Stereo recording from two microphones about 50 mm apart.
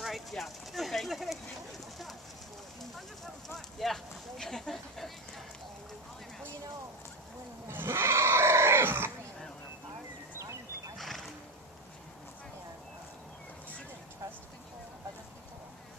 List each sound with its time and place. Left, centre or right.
0.0 s clip-clop: centre
3.4 s speech: centre
7.6 s livestock: right
11.0 s horse: centre